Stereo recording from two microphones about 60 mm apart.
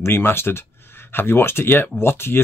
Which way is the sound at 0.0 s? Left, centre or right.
Left.